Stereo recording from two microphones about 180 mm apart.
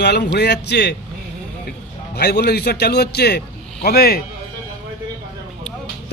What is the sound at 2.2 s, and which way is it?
A man's voice, 65° left (ahead or behind).